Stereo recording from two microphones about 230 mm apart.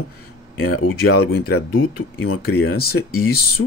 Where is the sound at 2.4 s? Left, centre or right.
Left.